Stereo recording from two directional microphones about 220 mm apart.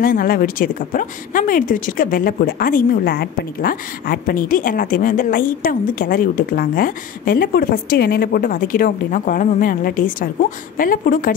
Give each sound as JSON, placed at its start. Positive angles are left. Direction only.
{"t": 0.0, "sound": "speech", "side_deg": 40}